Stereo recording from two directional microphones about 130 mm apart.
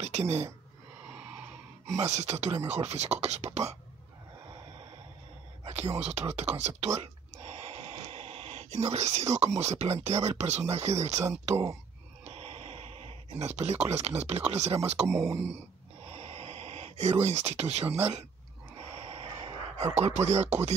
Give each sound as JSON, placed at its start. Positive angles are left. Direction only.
{"t": 0.0, "sound": "speech", "side_deg": -55}
{"t": 1.9, "sound": "speech", "side_deg": -60}
{"t": 5.7, "sound": "speech", "side_deg": -55}
{"t": 7.0, "sound": "a sound", "side_deg": -55}
{"t": 9.6, "sound": "speech", "side_deg": -60}
{"t": 12.3, "sound": "a sound", "side_deg": -50}
{"t": 15.3, "sound": "speech", "side_deg": -55}
{"t": 16.1, "sound": "a sound", "side_deg": -50}
{"t": 19.8, "sound": "speech", "side_deg": -55}